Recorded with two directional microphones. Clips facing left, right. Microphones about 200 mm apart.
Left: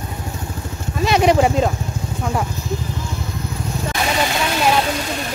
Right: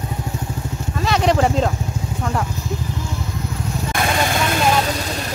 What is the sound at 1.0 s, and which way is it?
Speech, 15° left (ahead or behind).